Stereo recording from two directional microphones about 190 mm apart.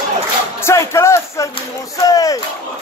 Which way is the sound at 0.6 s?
15° left (ahead or behind).